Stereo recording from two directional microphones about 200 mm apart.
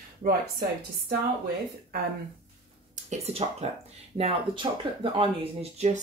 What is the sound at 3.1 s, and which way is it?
Speech, 30° right (ahead or behind).